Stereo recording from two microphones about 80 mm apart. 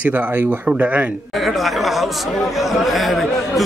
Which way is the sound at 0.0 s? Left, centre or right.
Centre.